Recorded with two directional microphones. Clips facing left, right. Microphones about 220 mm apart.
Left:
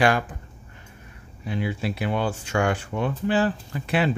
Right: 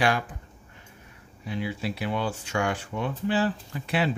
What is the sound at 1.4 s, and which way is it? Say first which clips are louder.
Speech: left 3 dB; 55° left (ahead or behind).